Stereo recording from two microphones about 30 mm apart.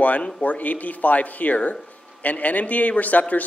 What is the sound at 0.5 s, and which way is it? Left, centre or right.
A man's voice, left.